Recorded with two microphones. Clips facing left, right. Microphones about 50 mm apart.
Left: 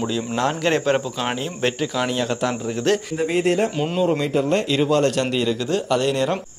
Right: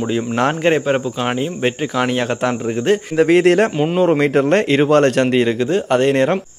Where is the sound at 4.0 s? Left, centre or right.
Right.